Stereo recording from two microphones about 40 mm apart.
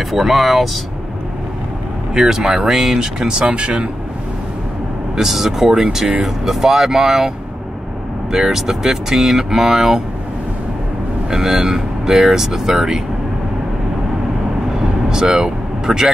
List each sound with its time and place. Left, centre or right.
0.1 s speech: centre
2.1 s speech: centre
5.1 s speech: centre
11.2 s speech: centre
15.0 s speech: centre